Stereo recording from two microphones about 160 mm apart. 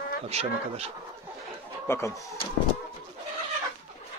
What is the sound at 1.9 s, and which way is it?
Speech, 15° left (ahead or behind).